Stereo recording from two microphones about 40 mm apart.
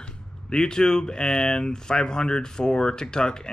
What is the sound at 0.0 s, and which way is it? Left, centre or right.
Speech, left.